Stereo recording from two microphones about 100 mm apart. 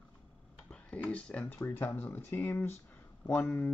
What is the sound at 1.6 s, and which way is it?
Speech, 25° left (ahead or behind).